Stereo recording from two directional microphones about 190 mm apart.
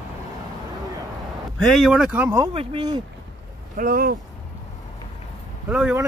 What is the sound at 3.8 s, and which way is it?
Speech, 50° right (ahead or behind).